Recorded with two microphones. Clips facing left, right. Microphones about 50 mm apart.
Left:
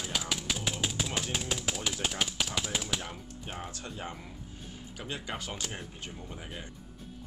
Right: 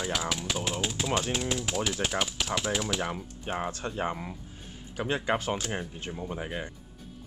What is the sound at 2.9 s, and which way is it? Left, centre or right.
Speech, right.